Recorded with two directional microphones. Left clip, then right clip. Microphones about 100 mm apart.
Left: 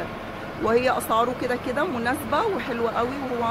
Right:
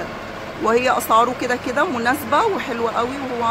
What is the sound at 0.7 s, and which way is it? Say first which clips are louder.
Speech: right 5 dB; 30° right (ahead or behind).